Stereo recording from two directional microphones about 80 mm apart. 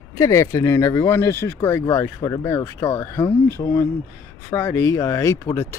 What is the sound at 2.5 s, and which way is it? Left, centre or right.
Speech, left.